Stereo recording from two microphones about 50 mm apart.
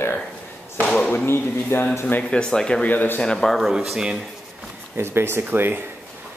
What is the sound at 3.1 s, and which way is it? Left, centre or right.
Speech, centre.